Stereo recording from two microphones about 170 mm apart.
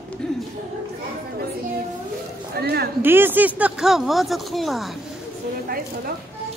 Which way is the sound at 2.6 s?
70° right (ahead or behind).